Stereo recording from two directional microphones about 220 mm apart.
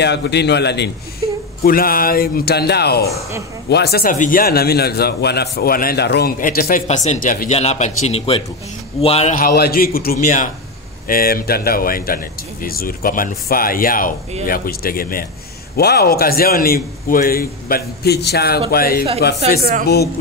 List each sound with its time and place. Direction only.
0.0 s a man's voice: 50° left (ahead or behind)